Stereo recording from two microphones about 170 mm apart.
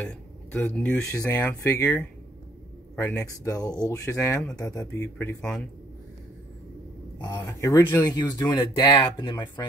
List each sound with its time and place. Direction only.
0.0 s speech: 10° left (ahead or behind)
1.1 s speech: 15° left (ahead or behind)
7.2 s speech: 20° left (ahead or behind)